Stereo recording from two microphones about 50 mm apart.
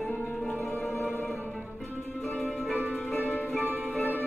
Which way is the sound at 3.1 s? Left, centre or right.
Left.